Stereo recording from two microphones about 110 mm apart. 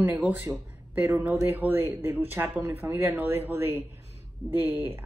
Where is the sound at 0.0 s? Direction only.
15° right (ahead or behind).